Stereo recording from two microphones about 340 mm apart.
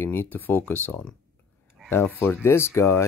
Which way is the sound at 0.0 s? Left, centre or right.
Centre.